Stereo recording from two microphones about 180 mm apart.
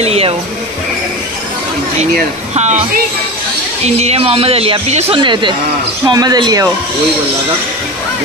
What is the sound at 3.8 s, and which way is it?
A man's voice, 35° right (ahead or behind).